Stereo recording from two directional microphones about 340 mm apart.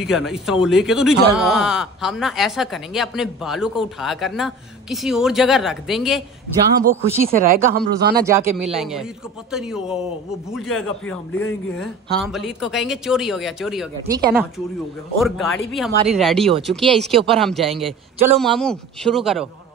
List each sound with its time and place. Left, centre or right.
0.0 s speech: centre
7.3 s speech: right
8.2 s speech: centre